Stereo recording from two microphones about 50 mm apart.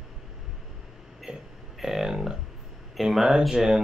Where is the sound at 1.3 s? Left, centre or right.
Centre.